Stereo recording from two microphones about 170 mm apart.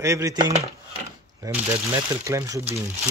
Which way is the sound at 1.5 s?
20° right (ahead or behind).